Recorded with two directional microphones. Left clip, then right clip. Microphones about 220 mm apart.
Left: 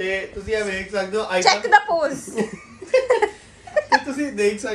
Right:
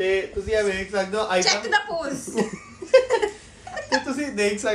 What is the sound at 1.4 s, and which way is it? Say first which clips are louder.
Speech: left 9 dB; 5° right (ahead or behind).